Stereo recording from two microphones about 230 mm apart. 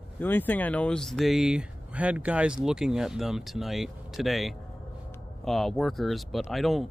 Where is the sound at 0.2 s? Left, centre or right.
Centre.